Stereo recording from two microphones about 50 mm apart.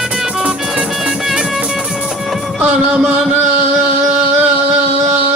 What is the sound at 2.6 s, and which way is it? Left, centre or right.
Music, right.